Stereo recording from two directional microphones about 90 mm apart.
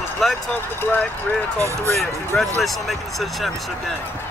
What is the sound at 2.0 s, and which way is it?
Speech, centre (ahead or behind).